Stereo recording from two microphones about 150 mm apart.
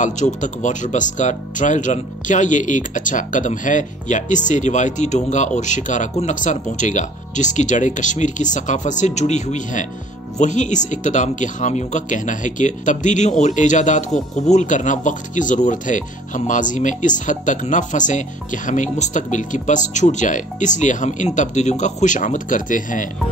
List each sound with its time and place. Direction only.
0.0 s speech: 55° left (ahead or behind)